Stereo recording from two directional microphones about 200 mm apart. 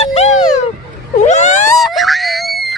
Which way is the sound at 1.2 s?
35° left (ahead or behind).